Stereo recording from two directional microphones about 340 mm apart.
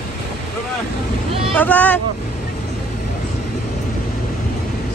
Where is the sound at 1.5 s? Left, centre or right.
Centre.